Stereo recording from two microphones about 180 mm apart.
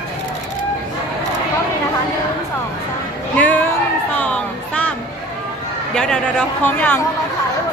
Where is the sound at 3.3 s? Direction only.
10° left (ahead or behind).